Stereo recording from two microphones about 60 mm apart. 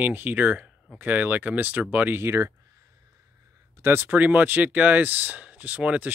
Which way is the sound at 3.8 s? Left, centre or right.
Right.